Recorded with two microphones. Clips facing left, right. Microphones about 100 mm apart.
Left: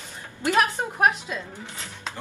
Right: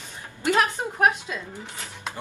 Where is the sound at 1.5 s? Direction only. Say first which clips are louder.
Right 1 dB; 15° right (ahead or behind).